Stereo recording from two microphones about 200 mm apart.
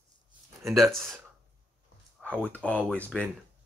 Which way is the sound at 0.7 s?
Centre (ahead or behind).